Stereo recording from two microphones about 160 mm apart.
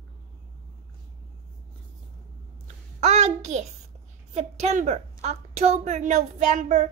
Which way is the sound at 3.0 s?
45° right (ahead or behind).